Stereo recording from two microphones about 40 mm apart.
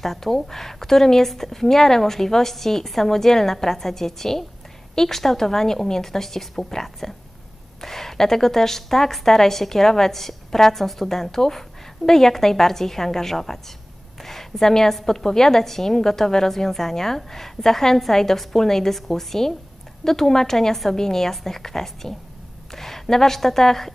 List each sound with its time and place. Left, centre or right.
0.0 s a woman's voice: centre